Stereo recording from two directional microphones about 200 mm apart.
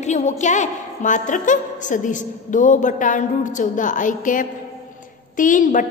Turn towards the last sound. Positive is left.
turn(degrees=40)  # may be behind; listen again after turning